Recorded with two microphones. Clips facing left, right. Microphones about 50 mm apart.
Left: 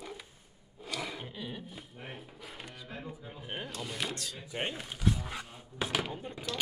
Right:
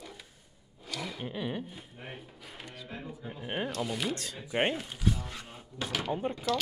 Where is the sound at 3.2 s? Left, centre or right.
Centre.